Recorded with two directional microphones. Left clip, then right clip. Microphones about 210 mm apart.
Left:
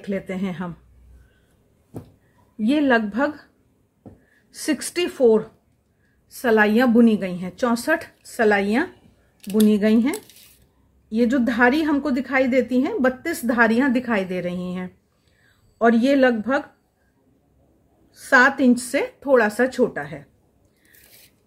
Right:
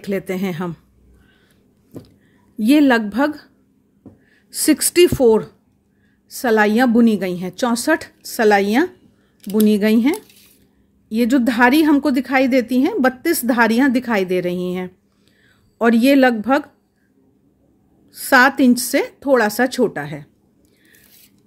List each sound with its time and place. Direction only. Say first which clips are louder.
0.0 s a woman's voice: right 5 dB; 50° right (ahead or behind)
2.6 s a woman's voice: right 5 dB; 50° right (ahead or behind)
4.5 s a woman's voice: right 8 dB; 50° right (ahead or behind)
18.1 s a woman's voice: right 3 dB; 50° right (ahead or behind)